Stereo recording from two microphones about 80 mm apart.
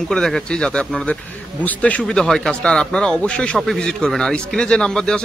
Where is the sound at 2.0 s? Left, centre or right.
Centre.